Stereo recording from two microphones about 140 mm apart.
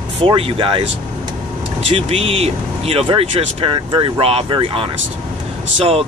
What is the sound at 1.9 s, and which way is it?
Speech, 45° right (ahead or behind).